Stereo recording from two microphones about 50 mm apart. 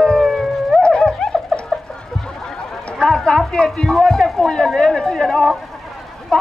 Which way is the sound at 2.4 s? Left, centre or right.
Centre.